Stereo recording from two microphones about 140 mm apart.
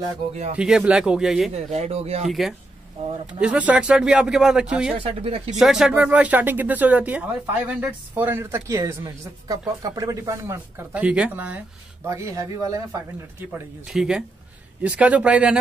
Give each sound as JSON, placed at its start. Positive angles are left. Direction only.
{"t": 0.3, "sound": "speech", "side_deg": -50}
{"t": 0.6, "sound": "speech", "side_deg": -5}
{"t": 1.5, "sound": "speech", "side_deg": -50}
{"t": 2.2, "sound": "speech", "side_deg": 0}
{"t": 4.9, "sound": "speech", "side_deg": -40}
{"t": 5.6, "sound": "speech", "side_deg": -5}
{"t": 13.5, "sound": "speech", "side_deg": -5}